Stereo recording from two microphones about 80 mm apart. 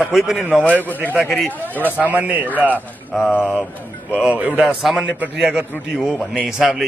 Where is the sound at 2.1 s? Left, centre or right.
Right.